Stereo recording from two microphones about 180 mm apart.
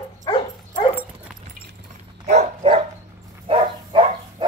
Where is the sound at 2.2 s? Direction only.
40° right (ahead or behind).